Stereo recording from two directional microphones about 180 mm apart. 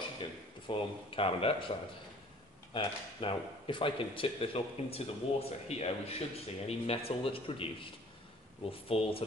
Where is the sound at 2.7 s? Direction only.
30° left (ahead or behind).